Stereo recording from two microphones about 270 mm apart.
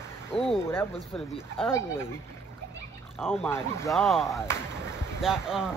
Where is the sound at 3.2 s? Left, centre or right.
Centre.